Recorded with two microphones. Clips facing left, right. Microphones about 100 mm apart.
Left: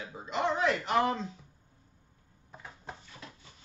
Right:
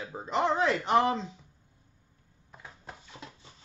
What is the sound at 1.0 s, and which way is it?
Speech, 20° right (ahead or behind).